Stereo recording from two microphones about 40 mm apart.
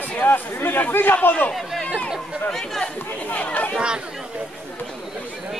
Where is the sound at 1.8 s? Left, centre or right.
Left.